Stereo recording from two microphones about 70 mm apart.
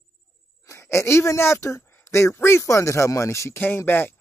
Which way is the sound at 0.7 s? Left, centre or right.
Left.